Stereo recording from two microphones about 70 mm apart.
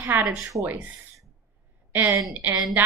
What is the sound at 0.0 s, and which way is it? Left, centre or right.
Speech, right.